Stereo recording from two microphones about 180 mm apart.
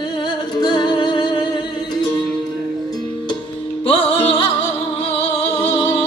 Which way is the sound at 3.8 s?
30° left (ahead or behind).